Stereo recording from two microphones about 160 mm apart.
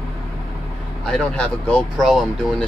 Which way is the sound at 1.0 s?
5° left (ahead or behind).